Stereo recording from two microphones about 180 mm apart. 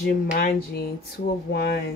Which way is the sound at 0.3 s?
55° left (ahead or behind).